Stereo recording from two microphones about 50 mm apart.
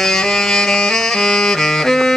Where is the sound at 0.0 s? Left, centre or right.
Centre.